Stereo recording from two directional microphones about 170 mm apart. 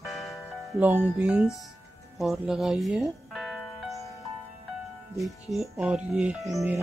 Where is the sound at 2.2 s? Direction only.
Centre (ahead or behind).